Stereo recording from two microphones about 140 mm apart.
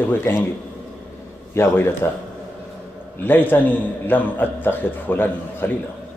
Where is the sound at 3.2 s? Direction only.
15° left (ahead or behind).